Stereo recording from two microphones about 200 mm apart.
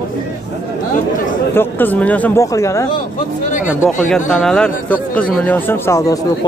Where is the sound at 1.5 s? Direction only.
10° left (ahead or behind).